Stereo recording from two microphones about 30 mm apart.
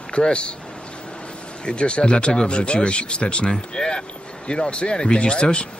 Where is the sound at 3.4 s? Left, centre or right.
Left.